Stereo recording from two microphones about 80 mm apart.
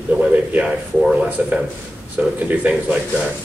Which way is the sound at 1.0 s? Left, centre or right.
Centre.